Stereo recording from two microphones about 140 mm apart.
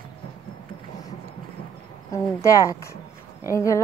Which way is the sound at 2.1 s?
25° left (ahead or behind).